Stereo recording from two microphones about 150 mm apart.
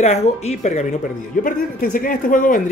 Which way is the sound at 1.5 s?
65° left (ahead or behind).